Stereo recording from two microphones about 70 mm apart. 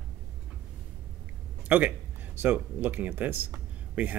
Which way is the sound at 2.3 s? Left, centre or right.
Right.